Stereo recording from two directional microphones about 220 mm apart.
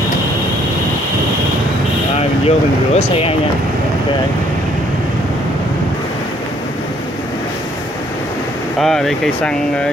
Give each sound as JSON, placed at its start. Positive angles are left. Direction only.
{"t": 2.1, "sound": "speech", "side_deg": 30}
{"t": 8.7, "sound": "speech", "side_deg": 0}